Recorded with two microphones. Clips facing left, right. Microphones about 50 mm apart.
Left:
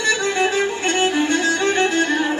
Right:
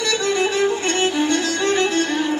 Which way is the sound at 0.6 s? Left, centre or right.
Left.